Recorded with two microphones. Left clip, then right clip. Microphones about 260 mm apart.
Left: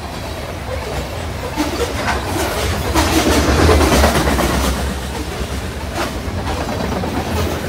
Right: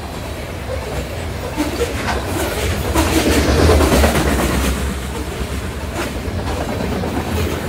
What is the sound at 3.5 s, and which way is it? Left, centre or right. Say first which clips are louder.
Vehicle: left 1 dB; left.